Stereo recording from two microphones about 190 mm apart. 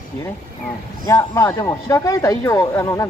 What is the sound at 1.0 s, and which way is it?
Speech, 15° left (ahead or behind).